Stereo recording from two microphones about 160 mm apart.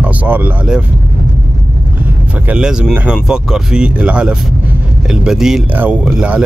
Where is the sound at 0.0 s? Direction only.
10° right (ahead or behind).